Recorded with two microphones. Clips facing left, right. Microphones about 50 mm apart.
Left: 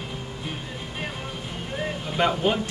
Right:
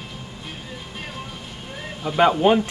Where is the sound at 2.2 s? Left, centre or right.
Right.